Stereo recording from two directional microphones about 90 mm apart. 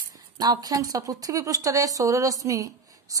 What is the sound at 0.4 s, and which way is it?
Speech, 45° right (ahead or behind).